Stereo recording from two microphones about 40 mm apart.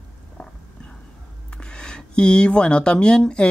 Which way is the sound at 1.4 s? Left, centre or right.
Left.